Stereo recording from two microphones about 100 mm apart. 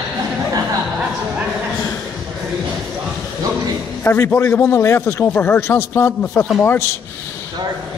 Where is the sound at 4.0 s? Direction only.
20° left (ahead or behind).